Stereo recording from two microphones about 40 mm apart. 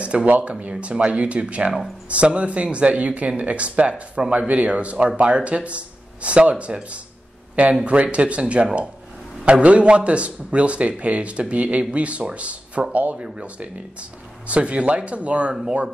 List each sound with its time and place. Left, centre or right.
0.0 s speech: right